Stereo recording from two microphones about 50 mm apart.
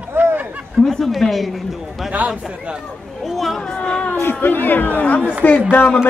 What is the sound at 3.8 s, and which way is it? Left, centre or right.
Cat, centre.